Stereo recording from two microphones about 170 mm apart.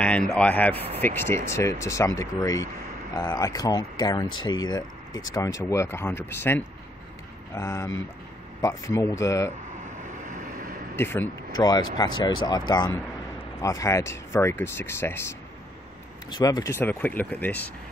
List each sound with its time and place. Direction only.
0.0 s speech: 5° left (ahead or behind)
0.7 s speech: 35° right (ahead or behind)
1.0 s speech: 15° left (ahead or behind)
10.2 s vehicle: 50° right (ahead or behind)
11.0 s speech: 15° left (ahead or behind)